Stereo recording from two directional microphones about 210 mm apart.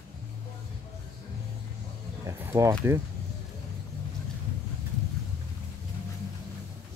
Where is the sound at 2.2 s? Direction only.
15° right (ahead or behind).